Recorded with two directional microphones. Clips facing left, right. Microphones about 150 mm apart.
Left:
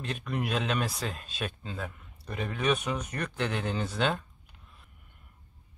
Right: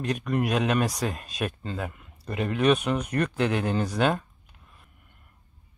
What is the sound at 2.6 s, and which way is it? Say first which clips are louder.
Speech: right 6 dB; 65° right (ahead or behind).